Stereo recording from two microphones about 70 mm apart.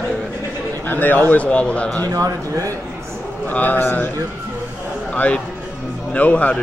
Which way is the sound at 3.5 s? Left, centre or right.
Left.